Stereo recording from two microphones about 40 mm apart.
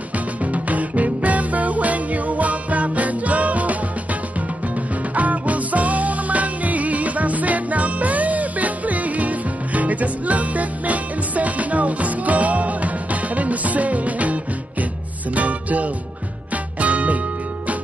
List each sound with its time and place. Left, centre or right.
0.4 s music: right